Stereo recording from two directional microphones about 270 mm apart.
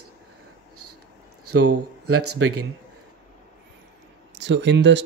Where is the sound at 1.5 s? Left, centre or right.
Right.